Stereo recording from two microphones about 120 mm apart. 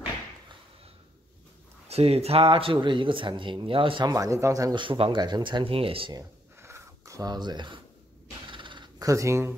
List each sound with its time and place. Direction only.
1.9 s speech: 60° right (ahead or behind)
4.1 s speech: 30° right (ahead or behind)
4.7 s speech: 45° right (ahead or behind)
6.1 s a sound: 25° right (ahead or behind); by 8.9 s 40° right (ahead or behind)
9.0 s speech: 25° right (ahead or behind)